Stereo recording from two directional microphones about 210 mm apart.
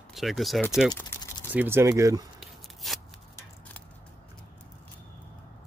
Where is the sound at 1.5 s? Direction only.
10° right (ahead or behind).